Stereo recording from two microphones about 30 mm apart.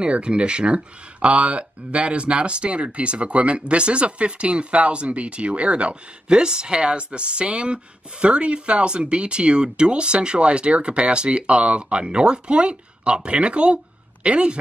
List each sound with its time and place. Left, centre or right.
0.0 s speech: right
1.2 s speech: right
6.2 s speech: right